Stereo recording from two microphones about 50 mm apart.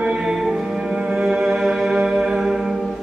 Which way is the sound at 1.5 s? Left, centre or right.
Centre.